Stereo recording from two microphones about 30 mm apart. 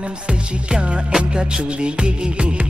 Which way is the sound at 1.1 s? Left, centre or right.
Right.